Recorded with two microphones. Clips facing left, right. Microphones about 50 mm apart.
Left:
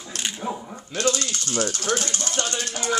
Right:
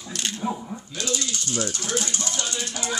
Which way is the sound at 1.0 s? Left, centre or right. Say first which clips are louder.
Left 5 dB; left.